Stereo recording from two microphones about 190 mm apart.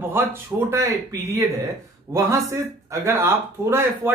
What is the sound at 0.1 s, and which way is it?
Speech, 10° right (ahead or behind).